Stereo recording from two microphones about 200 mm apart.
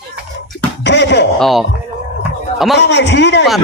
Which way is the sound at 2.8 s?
60° left (ahead or behind).